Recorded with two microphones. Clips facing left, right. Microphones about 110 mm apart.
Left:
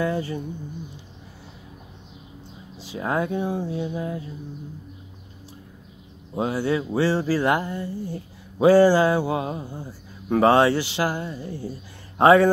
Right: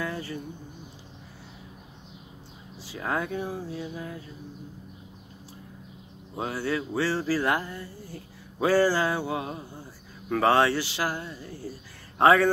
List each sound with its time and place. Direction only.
0.0 s speech: 25° left (ahead or behind)
2.8 s speech: 20° left (ahead or behind)
6.3 s speech: 25° left (ahead or behind)